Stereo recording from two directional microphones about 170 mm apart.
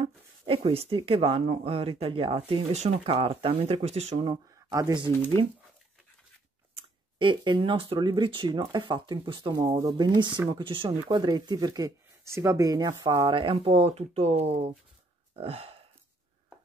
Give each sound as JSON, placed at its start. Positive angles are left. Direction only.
{"t": 0.0, "sound": "speech", "side_deg": -35}
{"t": 4.3, "sound": "speech", "side_deg": -20}
{"t": 6.7, "sound": "speech", "side_deg": -30}